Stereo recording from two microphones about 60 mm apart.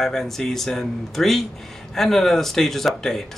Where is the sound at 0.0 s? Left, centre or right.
Centre.